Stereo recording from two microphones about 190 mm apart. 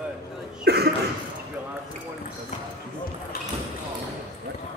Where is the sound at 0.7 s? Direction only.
55° right (ahead or behind).